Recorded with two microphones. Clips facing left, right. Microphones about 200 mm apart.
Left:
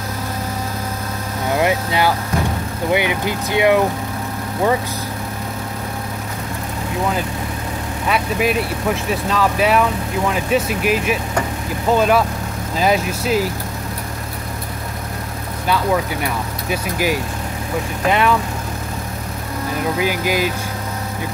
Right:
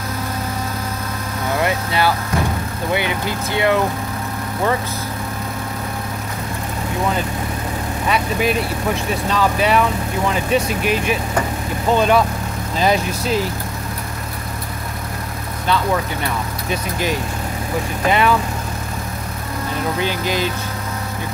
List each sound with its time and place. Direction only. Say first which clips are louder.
1.5 s vehicle: left 3 dB; 15° left (ahead or behind)
2.9 s speech: left 3 dB; 15° left (ahead or behind)
8.1 s speech: left 1 dB; centre (ahead or behind)
15.6 s speech: left 1 dB; 10° left (ahead or behind)
20.0 s speech: left 2 dB; 10° left (ahead or behind)